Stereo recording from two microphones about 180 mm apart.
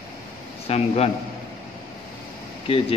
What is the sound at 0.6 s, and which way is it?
Speech, 35° left (ahead or behind).